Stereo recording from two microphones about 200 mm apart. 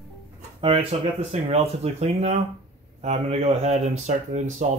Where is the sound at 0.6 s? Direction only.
25° right (ahead or behind).